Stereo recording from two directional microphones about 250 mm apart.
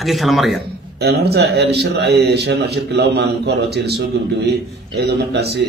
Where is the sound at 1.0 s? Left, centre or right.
Right.